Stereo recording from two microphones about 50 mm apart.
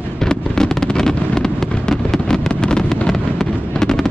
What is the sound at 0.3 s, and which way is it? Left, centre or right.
Fireworks, centre.